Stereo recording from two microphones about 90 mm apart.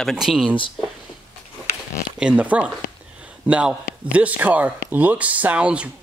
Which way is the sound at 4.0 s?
15° right (ahead or behind).